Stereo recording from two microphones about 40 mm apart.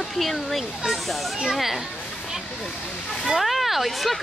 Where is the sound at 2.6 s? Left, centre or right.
Centre.